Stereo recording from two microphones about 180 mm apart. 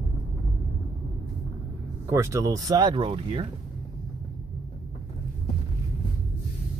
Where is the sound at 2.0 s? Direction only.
15° right (ahead or behind).